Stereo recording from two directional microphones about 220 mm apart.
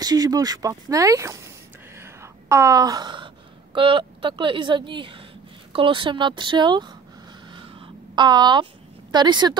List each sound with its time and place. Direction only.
0.0 s speech: 15° right (ahead or behind)
2.5 s a woman's voice: 15° right (ahead or behind)
8.2 s a woman's voice: 20° right (ahead or behind)